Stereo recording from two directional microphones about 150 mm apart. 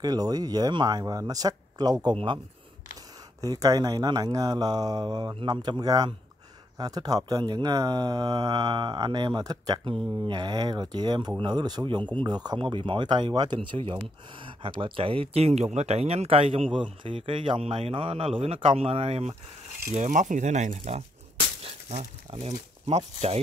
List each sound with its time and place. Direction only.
0.0 s speech: 25° right (ahead or behind); by 19.3 s 45° right (ahead or behind)
19.9 s speech: 55° right (ahead or behind)